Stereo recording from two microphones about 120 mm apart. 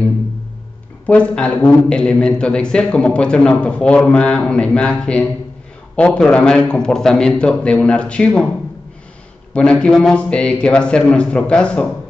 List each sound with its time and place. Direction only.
1.0 s a man's voice: 10° left (ahead or behind)
9.5 s a man's voice: 10° left (ahead or behind)